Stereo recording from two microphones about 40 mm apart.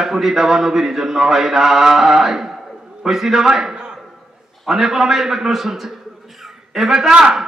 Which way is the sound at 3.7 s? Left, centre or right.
Centre.